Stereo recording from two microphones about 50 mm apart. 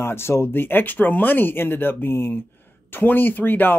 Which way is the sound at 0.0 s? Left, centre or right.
Left.